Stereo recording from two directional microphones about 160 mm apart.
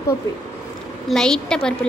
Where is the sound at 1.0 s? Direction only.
5° left (ahead or behind).